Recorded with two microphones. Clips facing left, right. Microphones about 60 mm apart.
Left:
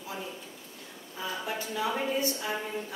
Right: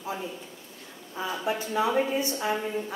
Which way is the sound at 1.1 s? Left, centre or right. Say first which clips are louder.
Right 5 dB; right.